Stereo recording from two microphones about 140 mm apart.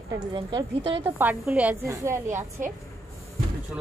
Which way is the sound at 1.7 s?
20° right (ahead or behind).